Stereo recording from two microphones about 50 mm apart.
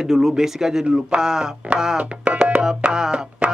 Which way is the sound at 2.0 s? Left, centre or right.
Right.